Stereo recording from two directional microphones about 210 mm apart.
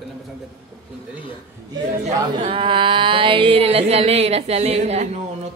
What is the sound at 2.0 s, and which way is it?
Speech, 25° right (ahead or behind).